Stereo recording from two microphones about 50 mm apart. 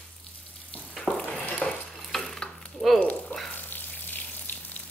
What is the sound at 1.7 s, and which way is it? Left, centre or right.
Stir, centre.